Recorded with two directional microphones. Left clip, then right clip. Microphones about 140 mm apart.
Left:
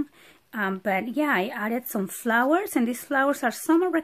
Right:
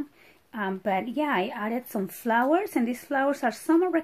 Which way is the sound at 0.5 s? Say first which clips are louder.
Left 2 dB; 40° left (ahead or behind).